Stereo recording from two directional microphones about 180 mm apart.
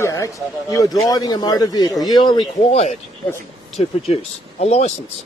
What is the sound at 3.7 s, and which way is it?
Speech, 35° left (ahead or behind).